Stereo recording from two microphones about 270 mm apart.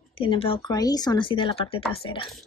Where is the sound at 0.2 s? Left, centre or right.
Centre.